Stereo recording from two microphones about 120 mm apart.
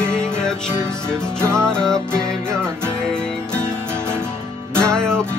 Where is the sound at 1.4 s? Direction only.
25° right (ahead or behind).